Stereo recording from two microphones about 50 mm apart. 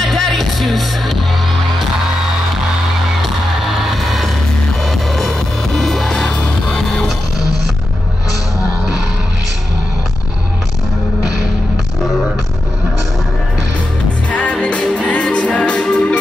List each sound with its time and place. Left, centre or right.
0.0 s music: centre
3.9 s music: centre
6.2 s music: centre
14.3 s music: left